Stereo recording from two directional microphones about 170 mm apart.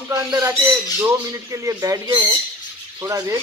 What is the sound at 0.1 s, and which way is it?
Speech, 20° right (ahead or behind).